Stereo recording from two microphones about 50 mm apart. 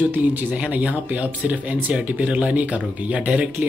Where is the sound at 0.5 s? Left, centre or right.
Right.